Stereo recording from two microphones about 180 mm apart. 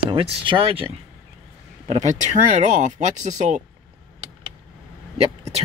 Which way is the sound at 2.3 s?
40° right (ahead or behind).